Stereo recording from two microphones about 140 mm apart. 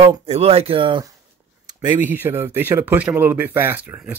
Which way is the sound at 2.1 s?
15° right (ahead or behind).